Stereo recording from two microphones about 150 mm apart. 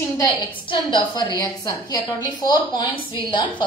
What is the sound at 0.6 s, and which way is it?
A woman's voice, 35° left (ahead or behind).